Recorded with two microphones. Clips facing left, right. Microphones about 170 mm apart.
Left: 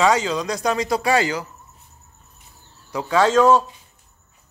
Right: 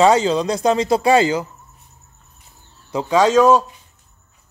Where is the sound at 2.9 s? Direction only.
15° right (ahead or behind).